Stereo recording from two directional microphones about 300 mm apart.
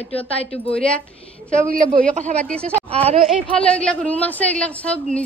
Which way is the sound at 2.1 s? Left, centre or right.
Right.